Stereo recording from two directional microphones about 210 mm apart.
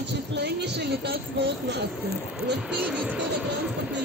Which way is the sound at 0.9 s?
55° right (ahead or behind).